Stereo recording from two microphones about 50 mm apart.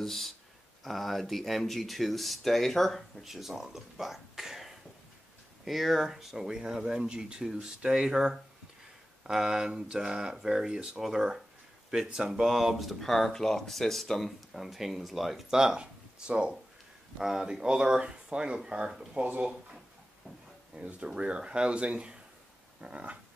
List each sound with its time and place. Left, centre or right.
0.0 s speech: centre
15.5 s speech: centre
17.2 s speech: centre
19.2 s speech: right
20.7 s speech: right